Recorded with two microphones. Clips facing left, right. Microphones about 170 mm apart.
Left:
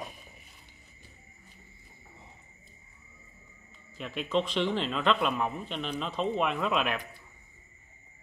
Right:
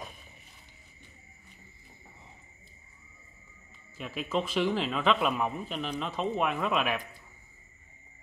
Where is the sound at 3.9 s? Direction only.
5° right (ahead or behind).